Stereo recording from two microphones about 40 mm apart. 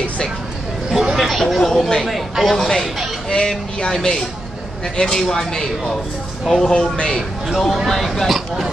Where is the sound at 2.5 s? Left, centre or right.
Centre.